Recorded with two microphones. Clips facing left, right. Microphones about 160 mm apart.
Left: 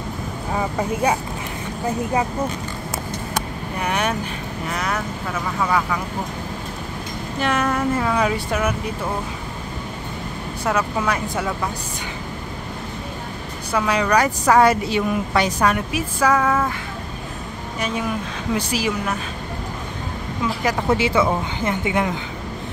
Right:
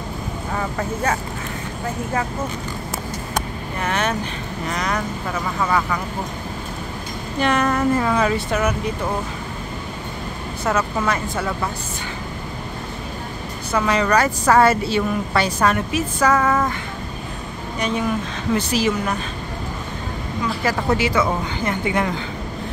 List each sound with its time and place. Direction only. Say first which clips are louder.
0.6 s a woman's voice: left 3 dB; 15° left (ahead or behind)
3.8 s a woman's voice: even; 10° left (ahead or behind)
7.4 s a woman's voice: right 2 dB; 5° left (ahead or behind)
10.6 s a woman's voice: right 1 dB; 10° left (ahead or behind)
13.7 s a woman's voice: right 1 dB; 10° left (ahead or behind)
17.7 s a woman's voice: right 2 dB; 5° left (ahead or behind)
20.6 s speech: even; 25° left (ahead or behind)